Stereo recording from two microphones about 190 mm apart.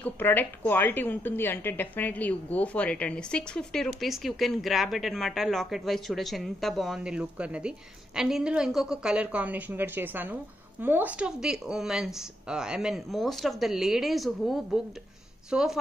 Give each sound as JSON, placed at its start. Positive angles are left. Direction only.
{"t": 0.0, "sound": "a woman's voice", "side_deg": 10}